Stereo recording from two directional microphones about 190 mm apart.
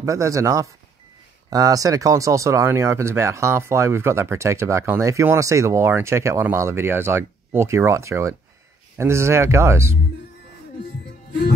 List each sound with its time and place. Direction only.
0.0 s speech: 15° right (ahead or behind)